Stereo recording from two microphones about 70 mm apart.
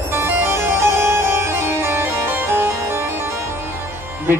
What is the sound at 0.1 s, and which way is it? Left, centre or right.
Harpsichord, right.